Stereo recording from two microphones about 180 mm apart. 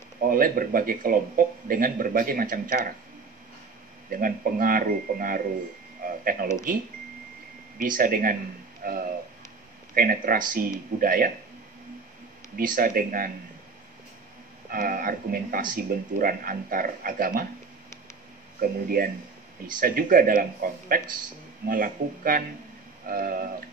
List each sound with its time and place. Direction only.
0.3 s speech: 50° right (ahead or behind)
4.1 s speech: 50° right (ahead or behind)
7.8 s speech: 50° right (ahead or behind)
12.5 s speech: 50° right (ahead or behind)
14.7 s speech: 50° right (ahead or behind)
18.6 s speech: 55° right (ahead or behind)